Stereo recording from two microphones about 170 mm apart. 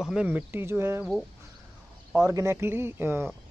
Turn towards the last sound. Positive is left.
turn(degrees=-15)  # may be behind; listen again after turning